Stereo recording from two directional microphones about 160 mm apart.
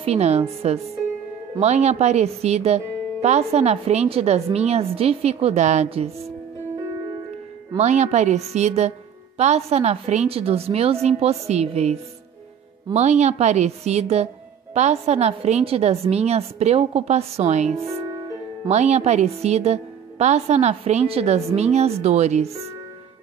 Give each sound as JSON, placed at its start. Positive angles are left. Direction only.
{"t": 0.0, "sound": "speech", "side_deg": -40}
{"t": 7.7, "sound": "a woman's voice", "side_deg": -45}